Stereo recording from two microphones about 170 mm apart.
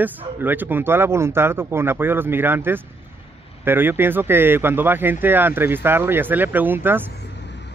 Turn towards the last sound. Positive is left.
turn(degrees=-10)  # may be behind; listen again after turning